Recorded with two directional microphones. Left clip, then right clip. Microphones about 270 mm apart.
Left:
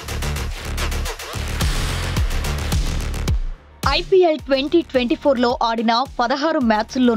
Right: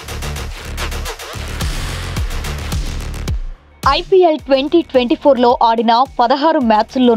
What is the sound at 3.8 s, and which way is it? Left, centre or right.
Speech, centre.